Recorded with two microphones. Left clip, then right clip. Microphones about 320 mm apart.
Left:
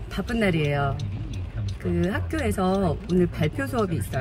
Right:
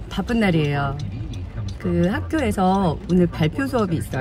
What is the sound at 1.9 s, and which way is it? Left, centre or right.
Speech, centre.